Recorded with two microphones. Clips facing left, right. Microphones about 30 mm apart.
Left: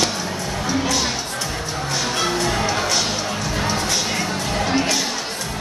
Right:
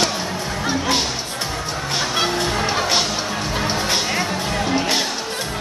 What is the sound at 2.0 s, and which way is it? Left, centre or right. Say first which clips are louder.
Music: right 1 dB; right.